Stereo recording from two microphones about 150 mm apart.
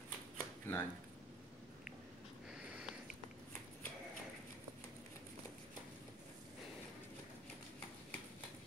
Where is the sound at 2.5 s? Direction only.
5° right (ahead or behind).